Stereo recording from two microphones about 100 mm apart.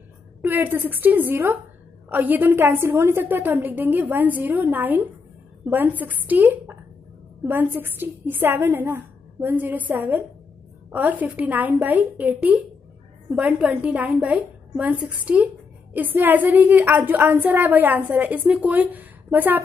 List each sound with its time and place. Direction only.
0.5 s a woman's voice: 20° right (ahead or behind)